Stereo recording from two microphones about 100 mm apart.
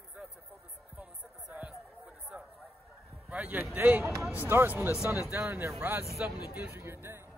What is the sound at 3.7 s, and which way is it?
Speech, 15° right (ahead or behind).